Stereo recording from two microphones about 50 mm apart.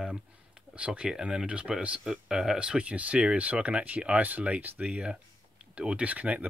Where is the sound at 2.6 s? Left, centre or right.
Right.